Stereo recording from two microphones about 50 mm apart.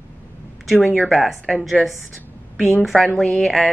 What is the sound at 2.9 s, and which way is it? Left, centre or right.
Speech, centre.